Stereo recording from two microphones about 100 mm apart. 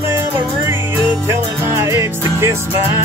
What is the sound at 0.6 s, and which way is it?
Music, 30° right (ahead or behind).